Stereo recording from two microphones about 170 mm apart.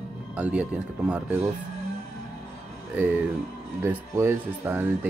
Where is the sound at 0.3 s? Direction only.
5° right (ahead or behind).